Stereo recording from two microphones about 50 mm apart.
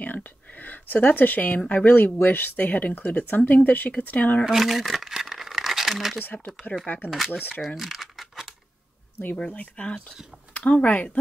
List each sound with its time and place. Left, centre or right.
0.0 s a sound: left
1.9 s speech: left
4.5 s a sound: centre
6.6 s speech: left
7.1 s speech: centre
7.6 s crumpling: centre
9.6 s speech: left